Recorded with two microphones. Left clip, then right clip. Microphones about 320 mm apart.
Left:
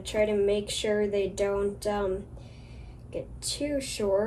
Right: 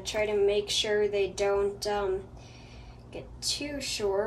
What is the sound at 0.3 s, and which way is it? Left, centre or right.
Speech, centre.